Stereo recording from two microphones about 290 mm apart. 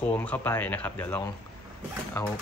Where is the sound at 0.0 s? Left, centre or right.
Centre.